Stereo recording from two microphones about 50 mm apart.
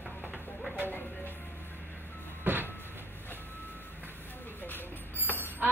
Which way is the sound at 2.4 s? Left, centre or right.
Right.